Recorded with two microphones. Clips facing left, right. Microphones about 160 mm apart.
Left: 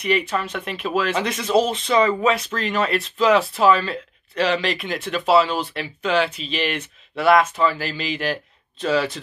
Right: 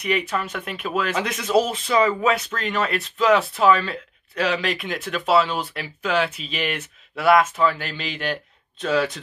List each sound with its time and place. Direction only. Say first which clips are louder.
0.0 s speech: left 2 dB; centre (ahead or behind)